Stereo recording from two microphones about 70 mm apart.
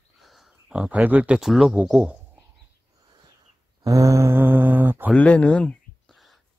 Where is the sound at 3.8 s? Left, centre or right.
Right.